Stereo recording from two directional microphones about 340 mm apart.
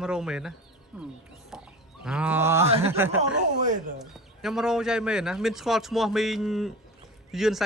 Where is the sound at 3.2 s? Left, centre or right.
Right.